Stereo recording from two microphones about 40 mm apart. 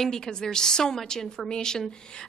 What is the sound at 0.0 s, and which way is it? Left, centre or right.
A woman's voice, centre.